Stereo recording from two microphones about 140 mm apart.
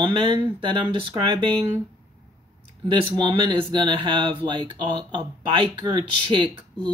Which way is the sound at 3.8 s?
35° right (ahead or behind).